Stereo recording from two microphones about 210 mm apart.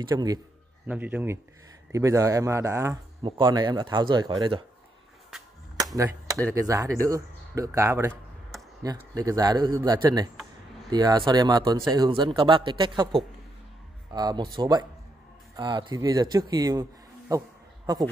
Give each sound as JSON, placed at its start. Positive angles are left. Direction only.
{"t": 0.0, "sound": "speech", "side_deg": -15}
{"t": 0.8, "sound": "speech", "side_deg": -5}
{"t": 3.2, "sound": "speech", "side_deg": -25}
{"t": 5.9, "sound": "speech", "side_deg": -15}